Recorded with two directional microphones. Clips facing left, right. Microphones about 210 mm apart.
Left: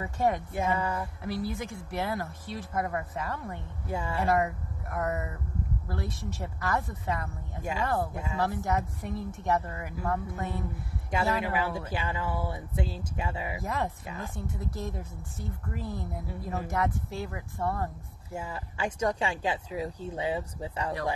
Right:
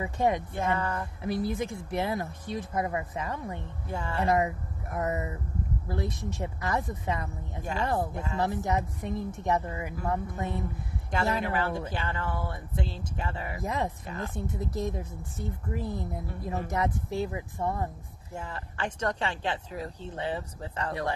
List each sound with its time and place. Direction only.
0.0 s speech: 15° right (ahead or behind)
0.6 s speech: 10° left (ahead or behind)
1.2 s speech: 20° right (ahead or behind)
3.9 s speech: 10° left (ahead or behind)
4.9 s speech: 20° right (ahead or behind)
8.1 s speech: 10° left (ahead or behind)
8.4 s speech: 20° right (ahead or behind)
11.4 s speech: 5° left (ahead or behind)
13.7 s speech: 20° right (ahead or behind)
18.3 s speech: 10° left (ahead or behind)